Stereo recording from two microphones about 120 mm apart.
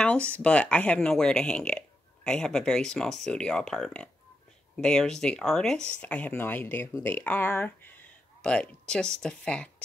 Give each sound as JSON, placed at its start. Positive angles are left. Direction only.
{"t": 0.0, "sound": "speech", "side_deg": 10}